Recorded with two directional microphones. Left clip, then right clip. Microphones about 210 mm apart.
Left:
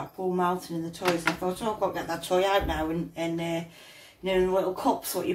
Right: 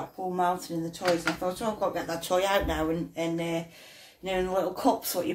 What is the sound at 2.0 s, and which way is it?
Speech, 40° right (ahead or behind).